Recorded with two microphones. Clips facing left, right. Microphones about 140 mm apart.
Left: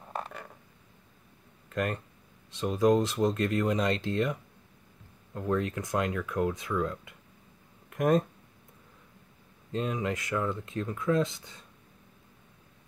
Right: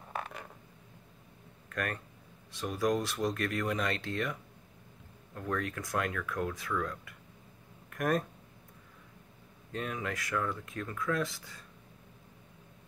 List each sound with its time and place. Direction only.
0.1 s a sound: 5° right (ahead or behind)
1.7 s speech: 25° left (ahead or behind)
9.7 s speech: 25° left (ahead or behind)